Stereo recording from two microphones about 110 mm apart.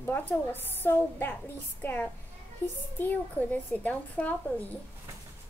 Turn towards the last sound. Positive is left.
turn(degrees=15)  # may be behind; listen again after turning